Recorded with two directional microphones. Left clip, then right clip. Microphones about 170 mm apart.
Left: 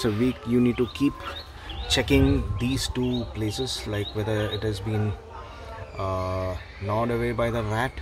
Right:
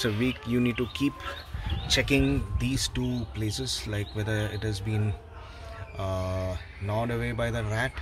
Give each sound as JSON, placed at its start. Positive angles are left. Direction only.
{"t": 0.0, "sound": "speech", "side_deg": 20}